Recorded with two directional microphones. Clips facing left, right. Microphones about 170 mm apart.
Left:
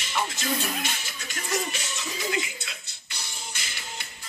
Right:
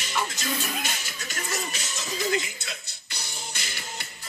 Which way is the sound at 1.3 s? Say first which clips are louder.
Left 3 dB; 40° right (ahead or behind).